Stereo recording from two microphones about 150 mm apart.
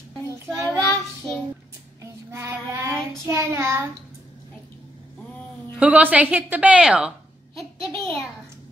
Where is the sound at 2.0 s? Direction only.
20° right (ahead or behind).